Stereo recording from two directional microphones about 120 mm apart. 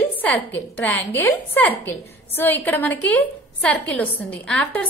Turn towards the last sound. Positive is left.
turn(degrees=10)  # may be behind; listen again after turning